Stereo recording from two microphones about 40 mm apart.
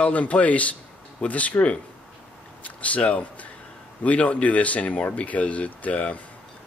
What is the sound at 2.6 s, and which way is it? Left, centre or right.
Speech, left.